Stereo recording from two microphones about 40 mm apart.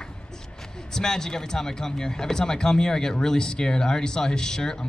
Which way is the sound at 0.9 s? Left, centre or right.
Centre.